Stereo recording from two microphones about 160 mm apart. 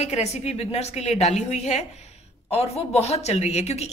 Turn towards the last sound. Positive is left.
turn(degrees=45)  # may be behind; listen again after turning